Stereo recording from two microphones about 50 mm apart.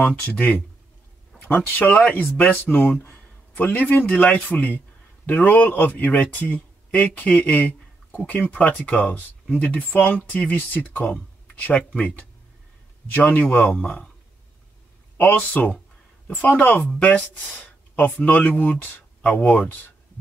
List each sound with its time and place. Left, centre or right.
0.2 s speech: left
2.0 s a man's voice: left
15.1 s speech: left